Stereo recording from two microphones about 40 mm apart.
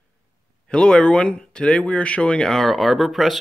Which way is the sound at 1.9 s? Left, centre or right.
Left.